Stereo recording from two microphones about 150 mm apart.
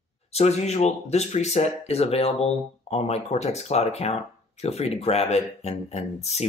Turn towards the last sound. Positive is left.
turn(degrees=45)  # may be behind; listen again after turning